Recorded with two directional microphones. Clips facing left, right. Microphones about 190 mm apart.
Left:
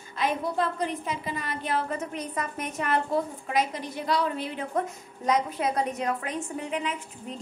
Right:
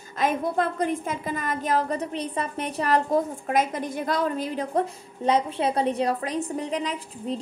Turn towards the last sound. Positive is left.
turn(degrees=-35)  # may be behind; listen again after turning